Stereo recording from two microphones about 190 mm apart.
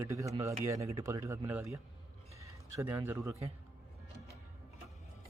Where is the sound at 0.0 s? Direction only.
15° right (ahead or behind).